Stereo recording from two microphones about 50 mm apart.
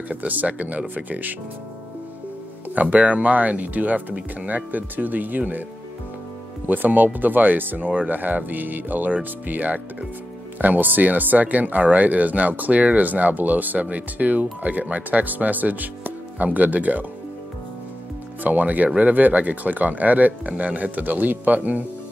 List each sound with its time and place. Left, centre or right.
0.1 s speech: right
2.7 s speech: right
6.7 s speech: right
18.4 s speech: right